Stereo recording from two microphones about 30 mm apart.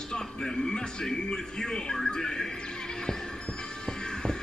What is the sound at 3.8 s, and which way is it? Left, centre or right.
Music, left.